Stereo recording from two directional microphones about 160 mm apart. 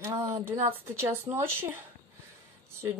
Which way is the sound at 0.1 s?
40° right (ahead or behind).